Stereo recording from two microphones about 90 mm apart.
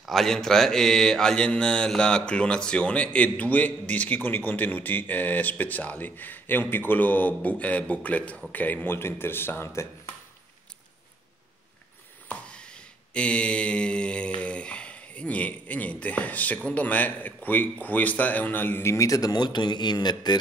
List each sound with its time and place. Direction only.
0.0 s mantra: 5° left (ahead or behind)
8.5 s a man's voice: 20° left (ahead or behind)
12.3 s mantra: 10° left (ahead or behind)
16.6 s a man's voice: 15° left (ahead or behind); by 20.3 s 50° left (ahead or behind)